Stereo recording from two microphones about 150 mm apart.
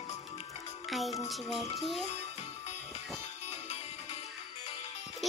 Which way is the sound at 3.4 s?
50° left (ahead or behind).